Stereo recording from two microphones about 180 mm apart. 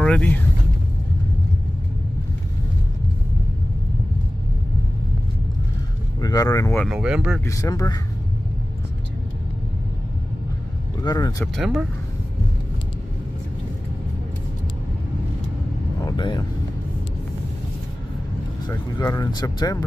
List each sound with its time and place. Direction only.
0.0 s speech: 5° left (ahead or behind)
6.2 s vehicle: 20° left (ahead or behind)
6.9 s speech: 5° right (ahead or behind)
7.4 s speech: 20° left (ahead or behind)
11.0 s speech: 20° left (ahead or behind)
11.5 s speech: centre (ahead or behind)
16.0 s vehicle: 20° left (ahead or behind)
18.7 s speech: 20° left (ahead or behind)